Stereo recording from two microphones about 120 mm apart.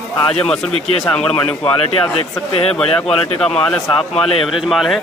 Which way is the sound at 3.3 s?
10° left (ahead or behind).